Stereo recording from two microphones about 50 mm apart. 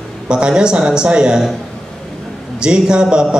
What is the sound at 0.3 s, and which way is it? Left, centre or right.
A man's voice, centre.